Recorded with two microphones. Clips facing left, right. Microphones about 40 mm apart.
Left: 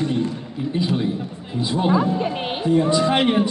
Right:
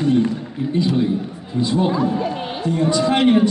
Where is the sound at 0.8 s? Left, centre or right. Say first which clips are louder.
Right 4 dB; centre.